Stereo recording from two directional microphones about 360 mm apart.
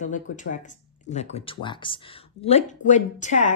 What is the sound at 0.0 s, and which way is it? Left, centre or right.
A woman's voice, left.